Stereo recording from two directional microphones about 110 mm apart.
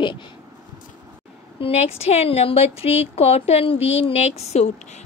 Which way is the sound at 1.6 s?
70° left (ahead or behind).